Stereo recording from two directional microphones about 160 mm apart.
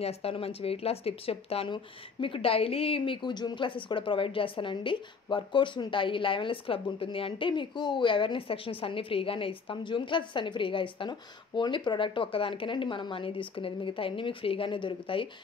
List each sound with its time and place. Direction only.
0.0 s speech: 40° left (ahead or behind)